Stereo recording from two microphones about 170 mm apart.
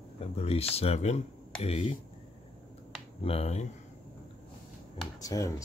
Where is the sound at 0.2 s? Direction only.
35° left (ahead or behind).